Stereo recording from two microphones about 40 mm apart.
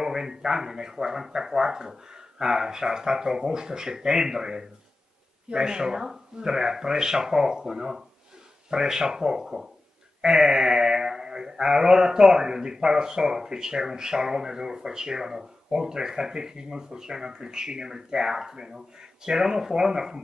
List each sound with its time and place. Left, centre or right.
0.0 s speech: centre